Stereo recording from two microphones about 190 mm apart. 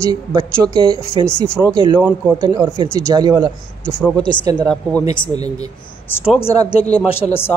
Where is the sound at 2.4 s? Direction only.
20° right (ahead or behind).